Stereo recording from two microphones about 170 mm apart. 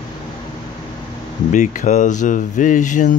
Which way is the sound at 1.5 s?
45° left (ahead or behind).